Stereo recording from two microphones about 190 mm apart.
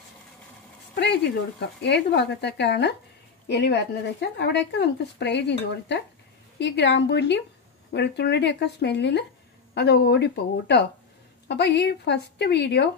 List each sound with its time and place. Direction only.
0.9 s speech: 65° left (ahead or behind)